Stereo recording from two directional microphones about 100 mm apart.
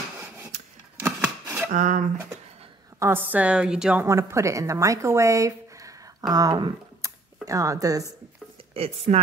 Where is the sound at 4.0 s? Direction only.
30° right (ahead or behind).